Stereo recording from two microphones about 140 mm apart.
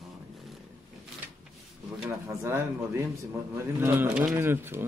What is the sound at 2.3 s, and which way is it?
A man's voice, 20° right (ahead or behind).